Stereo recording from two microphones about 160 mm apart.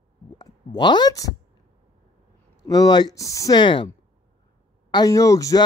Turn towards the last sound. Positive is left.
turn(degrees=20)  # may be behind; listen again after turning